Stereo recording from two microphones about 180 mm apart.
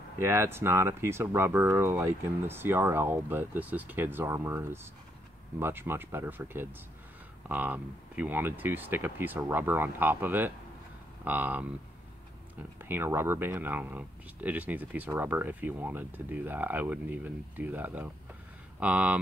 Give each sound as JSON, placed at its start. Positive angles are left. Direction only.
{"t": 0.2, "sound": "speech", "side_deg": -15}